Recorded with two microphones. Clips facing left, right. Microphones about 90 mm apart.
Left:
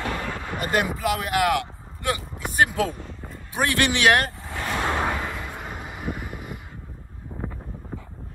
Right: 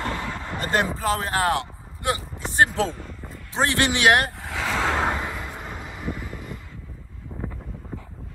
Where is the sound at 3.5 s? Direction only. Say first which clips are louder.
Even; 25° right (ahead or behind).